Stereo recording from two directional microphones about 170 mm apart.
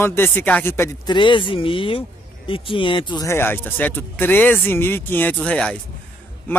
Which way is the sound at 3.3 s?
15° left (ahead or behind).